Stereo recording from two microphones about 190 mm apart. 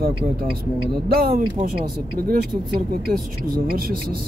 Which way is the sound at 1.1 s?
55° right (ahead or behind).